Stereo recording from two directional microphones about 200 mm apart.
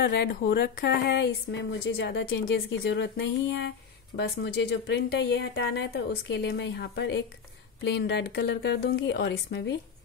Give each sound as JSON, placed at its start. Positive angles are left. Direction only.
{"t": 0.0, "sound": "a woman's voice", "side_deg": 60}